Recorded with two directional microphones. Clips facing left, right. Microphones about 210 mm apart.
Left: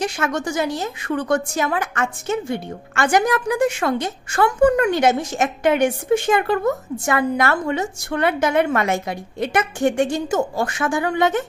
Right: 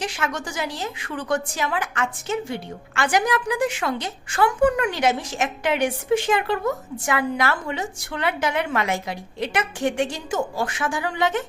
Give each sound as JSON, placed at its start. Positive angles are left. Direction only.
{"t": 0.0, "sound": "a woman's voice", "side_deg": 45}